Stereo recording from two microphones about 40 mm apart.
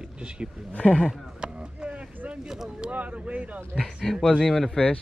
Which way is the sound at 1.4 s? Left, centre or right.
Right.